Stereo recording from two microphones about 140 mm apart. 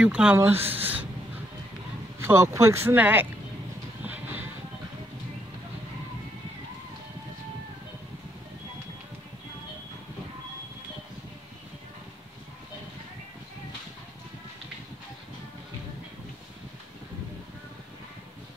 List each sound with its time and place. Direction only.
0.0 s speech: 10° right (ahead or behind)
2.1 s speech: 20° right (ahead or behind)
4.0 s music: 15° right (ahead or behind)